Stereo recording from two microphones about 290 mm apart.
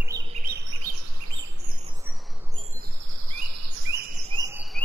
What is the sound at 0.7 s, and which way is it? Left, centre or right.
Chirp, right.